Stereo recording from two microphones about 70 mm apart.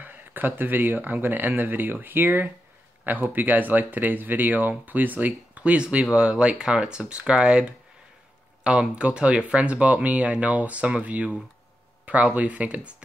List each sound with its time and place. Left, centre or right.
0.0 s speech: right
12.4 s speech: centre